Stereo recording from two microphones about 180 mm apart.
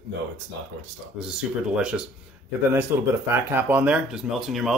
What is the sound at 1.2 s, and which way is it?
Speech, 5° right (ahead or behind).